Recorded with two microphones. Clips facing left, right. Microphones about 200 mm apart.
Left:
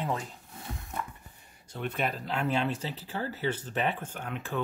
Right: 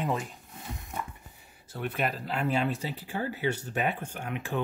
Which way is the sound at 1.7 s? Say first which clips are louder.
Right 1 dB; 5° right (ahead or behind).